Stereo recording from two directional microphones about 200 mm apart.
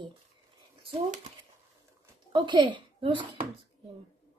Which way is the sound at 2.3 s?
25° right (ahead or behind).